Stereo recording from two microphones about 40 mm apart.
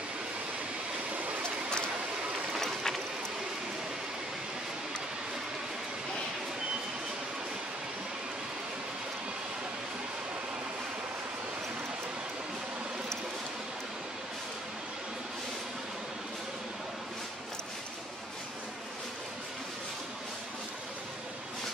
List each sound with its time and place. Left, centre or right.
2.5 s vehicle: centre